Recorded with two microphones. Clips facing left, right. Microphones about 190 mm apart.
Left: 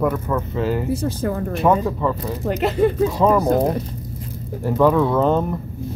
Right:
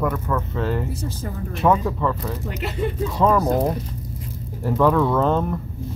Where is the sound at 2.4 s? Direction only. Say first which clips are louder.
Left 13 dB; 45° left (ahead or behind).